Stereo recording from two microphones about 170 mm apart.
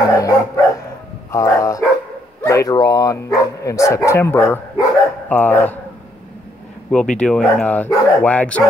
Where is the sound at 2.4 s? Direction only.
20° left (ahead or behind).